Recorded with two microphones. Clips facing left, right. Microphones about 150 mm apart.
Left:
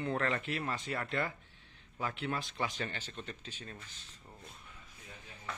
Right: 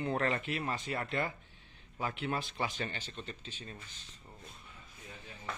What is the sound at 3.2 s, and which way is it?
Speech, 5° left (ahead or behind).